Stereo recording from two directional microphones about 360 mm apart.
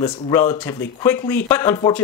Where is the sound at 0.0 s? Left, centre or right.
Centre.